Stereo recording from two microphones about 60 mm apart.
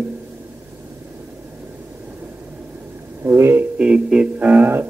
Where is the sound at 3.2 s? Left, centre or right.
Right.